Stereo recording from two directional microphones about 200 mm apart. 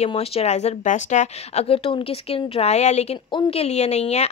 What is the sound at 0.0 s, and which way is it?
A woman's voice, 30° left (ahead or behind).